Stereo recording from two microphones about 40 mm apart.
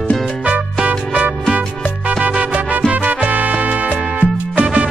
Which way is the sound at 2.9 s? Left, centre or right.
Right.